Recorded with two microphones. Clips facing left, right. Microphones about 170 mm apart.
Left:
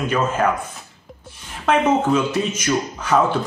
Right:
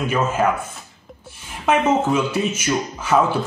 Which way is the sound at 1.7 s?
10° right (ahead or behind).